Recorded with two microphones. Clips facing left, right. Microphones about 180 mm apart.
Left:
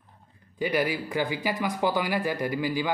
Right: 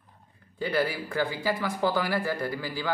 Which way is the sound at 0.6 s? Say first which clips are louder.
Left 1 dB; 15° left (ahead or behind).